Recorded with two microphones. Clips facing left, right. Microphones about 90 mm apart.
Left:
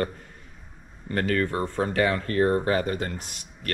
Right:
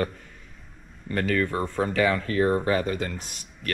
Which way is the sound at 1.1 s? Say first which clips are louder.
Even; 35° left (ahead or behind).